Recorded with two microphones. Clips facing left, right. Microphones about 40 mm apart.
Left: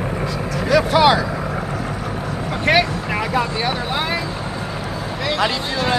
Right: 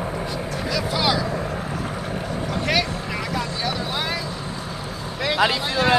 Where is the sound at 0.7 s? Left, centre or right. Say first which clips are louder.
Left 10 dB; left.